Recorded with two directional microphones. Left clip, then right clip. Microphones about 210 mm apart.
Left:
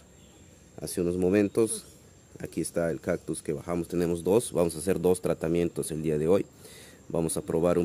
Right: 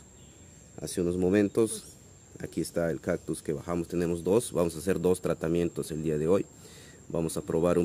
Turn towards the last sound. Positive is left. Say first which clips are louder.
# left 1 dB
turn(degrees=5)  # may be behind; listen again after turning